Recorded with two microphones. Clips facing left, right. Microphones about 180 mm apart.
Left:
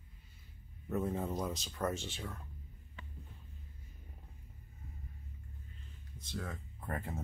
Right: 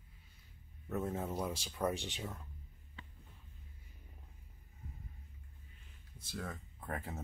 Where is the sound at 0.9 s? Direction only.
Centre (ahead or behind); by 2.4 s 20° right (ahead or behind).